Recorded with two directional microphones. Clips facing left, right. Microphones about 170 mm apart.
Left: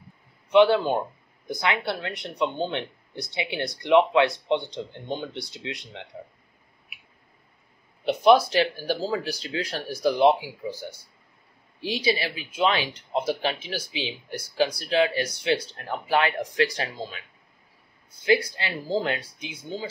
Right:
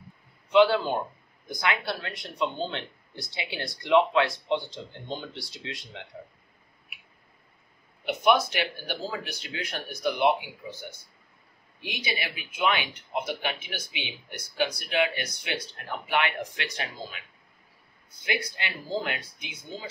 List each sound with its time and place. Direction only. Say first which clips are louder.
0.5 s speech: left 3 dB; 20° left (ahead or behind)
8.0 s speech: left 5 dB; 30° left (ahead or behind)
18.2 s speech: left 9 dB; 30° left (ahead or behind)